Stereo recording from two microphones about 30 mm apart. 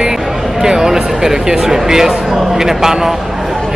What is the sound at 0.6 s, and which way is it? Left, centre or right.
Speech, centre.